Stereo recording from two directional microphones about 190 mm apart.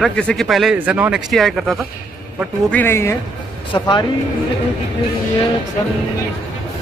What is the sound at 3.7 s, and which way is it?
Speech, 25° left (ahead or behind).